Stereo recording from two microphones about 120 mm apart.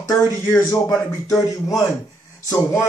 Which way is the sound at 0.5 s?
25° left (ahead or behind).